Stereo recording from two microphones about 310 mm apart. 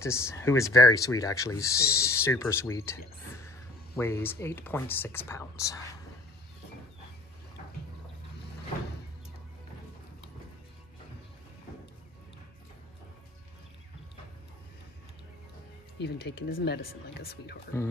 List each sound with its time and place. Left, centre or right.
0.0 s speech: centre
16.0 s speech: left